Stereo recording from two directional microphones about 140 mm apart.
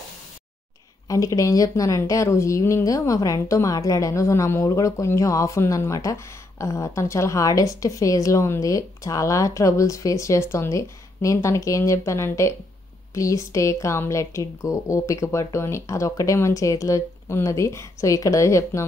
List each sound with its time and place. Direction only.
1.0 s a woman's voice: 25° left (ahead or behind)